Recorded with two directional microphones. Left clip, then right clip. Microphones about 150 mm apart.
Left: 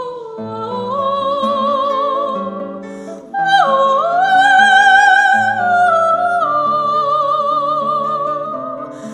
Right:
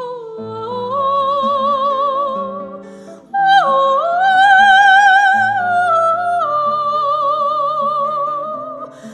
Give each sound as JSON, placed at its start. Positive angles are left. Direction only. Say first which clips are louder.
{"t": 0.6, "sound": "music", "louder": "even", "side_deg": -45}
{"t": 3.3, "sound": "music", "louder": "right 1 dB", "side_deg": -45}